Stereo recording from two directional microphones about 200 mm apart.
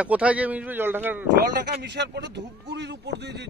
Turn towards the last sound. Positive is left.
turn(degrees=-60)  # may be behind; listen again after turning